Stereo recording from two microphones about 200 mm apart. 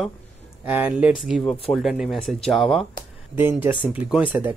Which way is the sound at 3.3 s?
10° right (ahead or behind).